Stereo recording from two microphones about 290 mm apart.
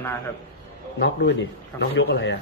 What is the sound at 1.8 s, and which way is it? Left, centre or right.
Speech, left.